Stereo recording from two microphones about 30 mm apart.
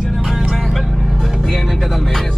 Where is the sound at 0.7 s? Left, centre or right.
Centre.